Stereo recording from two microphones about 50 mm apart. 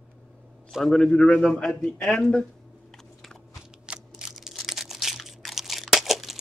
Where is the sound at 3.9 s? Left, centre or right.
Centre.